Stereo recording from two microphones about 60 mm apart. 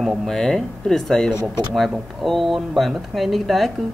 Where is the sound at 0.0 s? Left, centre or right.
Centre.